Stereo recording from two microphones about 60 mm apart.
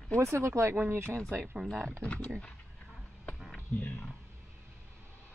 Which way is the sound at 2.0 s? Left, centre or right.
Centre.